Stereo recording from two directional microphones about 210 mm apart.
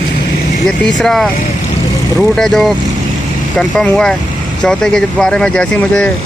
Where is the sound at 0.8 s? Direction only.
Centre (ahead or behind).